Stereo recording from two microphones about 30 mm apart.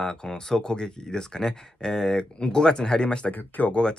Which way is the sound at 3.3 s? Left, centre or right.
Left.